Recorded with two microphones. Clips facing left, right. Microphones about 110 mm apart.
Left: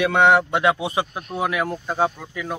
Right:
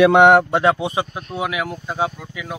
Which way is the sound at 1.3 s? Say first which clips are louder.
Left 1 dB; 10° right (ahead or behind).